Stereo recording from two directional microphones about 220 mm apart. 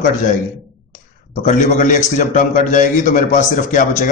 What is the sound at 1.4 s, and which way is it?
A man's voice, 35° left (ahead or behind).